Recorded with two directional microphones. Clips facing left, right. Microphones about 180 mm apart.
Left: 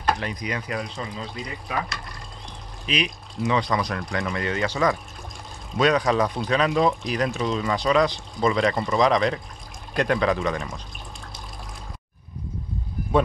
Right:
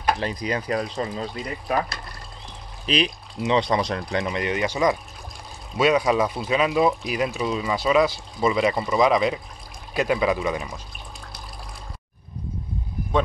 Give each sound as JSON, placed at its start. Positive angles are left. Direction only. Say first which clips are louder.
{"t": 0.2, "sound": "speech", "louder": "right 3 dB", "side_deg": -30}
{"t": 2.9, "sound": "speech", "louder": "right 3 dB", "side_deg": -25}